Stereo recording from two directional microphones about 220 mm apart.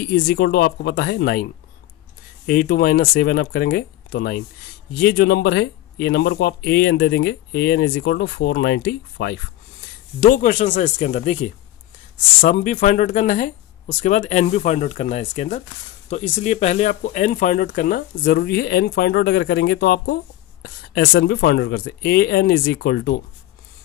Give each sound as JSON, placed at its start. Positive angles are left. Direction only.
{"t": 0.0, "sound": "speech", "side_deg": 45}
{"t": 10.2, "sound": "speech", "side_deg": 40}